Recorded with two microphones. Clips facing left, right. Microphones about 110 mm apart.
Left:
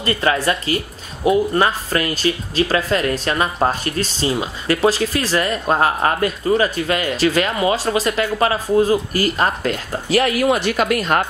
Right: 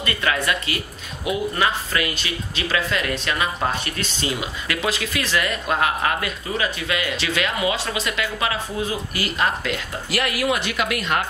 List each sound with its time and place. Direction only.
0.0 s speech: 35° left (ahead or behind)